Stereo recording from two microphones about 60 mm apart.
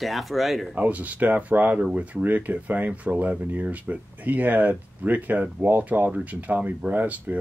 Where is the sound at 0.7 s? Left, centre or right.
Right.